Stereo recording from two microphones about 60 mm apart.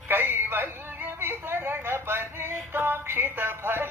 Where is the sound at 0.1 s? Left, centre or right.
Right.